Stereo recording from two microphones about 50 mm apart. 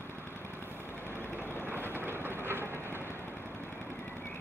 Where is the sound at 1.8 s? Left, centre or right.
Right.